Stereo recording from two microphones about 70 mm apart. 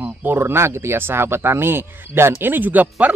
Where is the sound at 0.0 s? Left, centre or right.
Right.